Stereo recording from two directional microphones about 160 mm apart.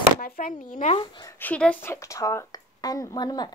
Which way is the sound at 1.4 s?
10° left (ahead or behind).